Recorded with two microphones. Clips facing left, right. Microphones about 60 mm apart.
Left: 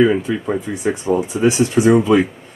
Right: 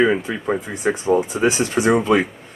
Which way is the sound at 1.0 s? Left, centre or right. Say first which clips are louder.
Left 1 dB; centre.